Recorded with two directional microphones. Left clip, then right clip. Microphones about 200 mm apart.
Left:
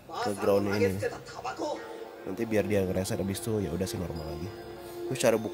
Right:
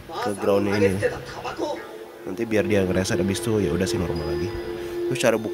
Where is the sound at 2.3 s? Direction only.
15° left (ahead or behind).